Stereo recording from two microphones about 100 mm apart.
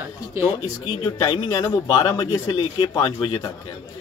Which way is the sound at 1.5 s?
35° left (ahead or behind).